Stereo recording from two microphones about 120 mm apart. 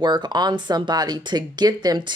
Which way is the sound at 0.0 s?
40° right (ahead or behind).